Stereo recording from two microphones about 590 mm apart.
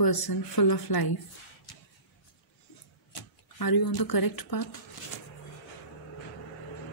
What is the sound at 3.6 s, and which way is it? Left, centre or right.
A woman's voice, left.